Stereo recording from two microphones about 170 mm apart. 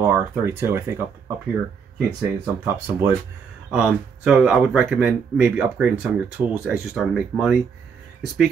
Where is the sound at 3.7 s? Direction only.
5° right (ahead or behind).